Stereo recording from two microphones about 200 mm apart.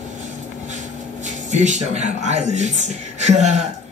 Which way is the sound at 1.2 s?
35° right (ahead or behind).